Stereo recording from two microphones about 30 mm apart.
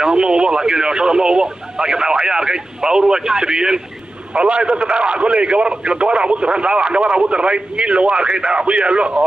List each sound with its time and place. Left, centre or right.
0.0 s speech: right
4.3 s a man's voice: right